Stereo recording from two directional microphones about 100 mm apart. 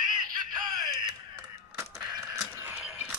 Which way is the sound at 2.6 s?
20° right (ahead or behind).